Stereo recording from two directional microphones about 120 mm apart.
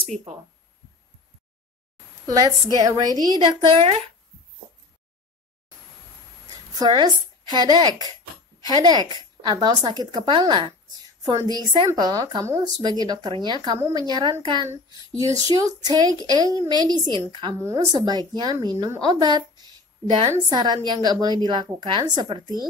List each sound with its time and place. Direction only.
2.2 s a woman's voice: 30° right (ahead or behind)
3.4 s a woman's voice: 50° right (ahead or behind)
6.5 s a woman's voice: 35° right (ahead or behind)
14.9 s a woman's voice: 30° right (ahead or behind)
17.6 s speech: 25° right (ahead or behind)
17.9 s a woman's voice: 35° right (ahead or behind)
20.4 s a woman's voice: 35° right (ahead or behind)